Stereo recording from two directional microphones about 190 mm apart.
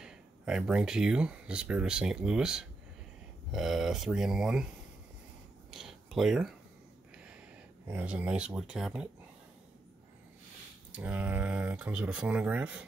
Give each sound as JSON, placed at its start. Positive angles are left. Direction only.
{"t": 0.0, "sound": "speech", "side_deg": -5}
{"t": 5.7, "sound": "a sound", "side_deg": 0}
{"t": 7.9, "sound": "speech", "side_deg": -10}
{"t": 10.9, "sound": "speech", "side_deg": -5}